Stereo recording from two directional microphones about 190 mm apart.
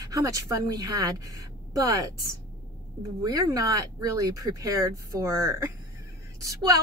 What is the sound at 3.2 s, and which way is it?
A woman's voice, 20° right (ahead or behind).